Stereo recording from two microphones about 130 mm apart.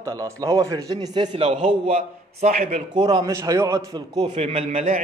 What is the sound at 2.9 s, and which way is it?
Speech, 35° right (ahead or behind).